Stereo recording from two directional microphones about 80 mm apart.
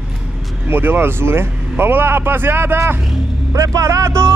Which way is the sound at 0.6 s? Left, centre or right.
Right.